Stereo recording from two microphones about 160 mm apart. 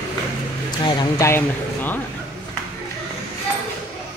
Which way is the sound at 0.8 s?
25° left (ahead or behind).